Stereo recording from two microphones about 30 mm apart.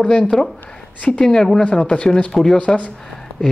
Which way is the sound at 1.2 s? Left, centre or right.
Left.